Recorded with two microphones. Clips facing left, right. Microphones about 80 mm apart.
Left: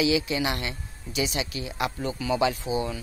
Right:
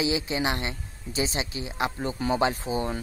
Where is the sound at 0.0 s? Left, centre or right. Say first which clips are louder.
Left 2 dB; right.